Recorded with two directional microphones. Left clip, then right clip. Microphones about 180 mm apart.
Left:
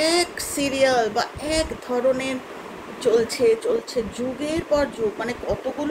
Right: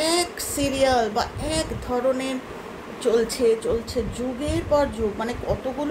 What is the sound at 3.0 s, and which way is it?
Speech, 10° left (ahead or behind).